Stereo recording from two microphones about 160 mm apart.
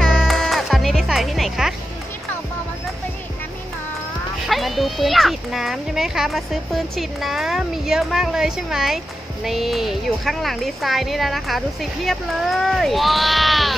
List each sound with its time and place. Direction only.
0.0 s music: 5° left (ahead or behind)
4.5 s speech: centre (ahead or behind)